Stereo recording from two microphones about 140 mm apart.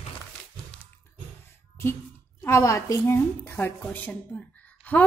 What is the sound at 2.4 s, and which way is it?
A woman's voice, 20° left (ahead or behind).